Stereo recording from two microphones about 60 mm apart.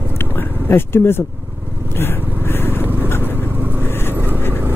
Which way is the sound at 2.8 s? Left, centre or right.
Right.